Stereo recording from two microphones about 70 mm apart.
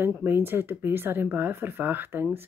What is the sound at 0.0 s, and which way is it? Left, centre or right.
Speech, right.